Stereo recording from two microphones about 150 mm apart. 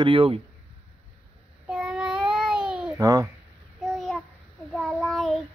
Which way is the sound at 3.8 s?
Centre (ahead or behind).